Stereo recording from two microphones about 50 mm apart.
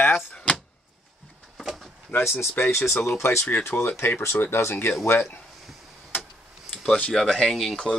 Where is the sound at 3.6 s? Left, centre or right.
Left.